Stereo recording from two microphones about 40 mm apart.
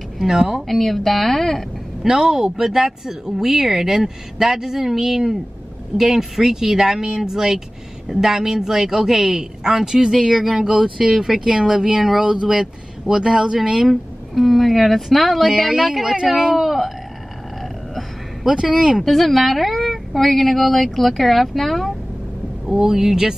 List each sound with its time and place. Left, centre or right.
0.2 s speech: centre
0.7 s speech: centre
2.0 s speech: centre
13.8 s speech: centre
18.5 s speech: centre
19.0 s speech: centre
22.7 s speech: centre